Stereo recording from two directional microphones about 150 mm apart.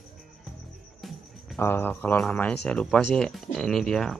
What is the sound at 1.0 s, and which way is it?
Cricket, centre (ahead or behind).